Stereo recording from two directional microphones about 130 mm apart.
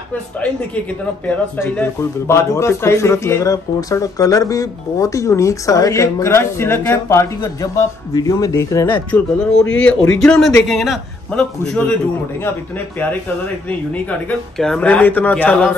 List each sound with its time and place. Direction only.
0.4 s a man's voice: 10° left (ahead or behind)
13.7 s speech: 10° left (ahead or behind)